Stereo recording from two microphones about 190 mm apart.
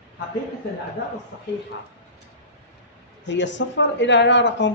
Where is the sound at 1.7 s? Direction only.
75° left (ahead or behind).